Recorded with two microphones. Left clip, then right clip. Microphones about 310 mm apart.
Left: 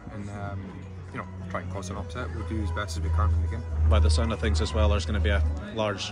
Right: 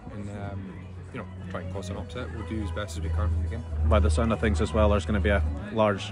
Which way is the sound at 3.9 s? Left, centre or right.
Right.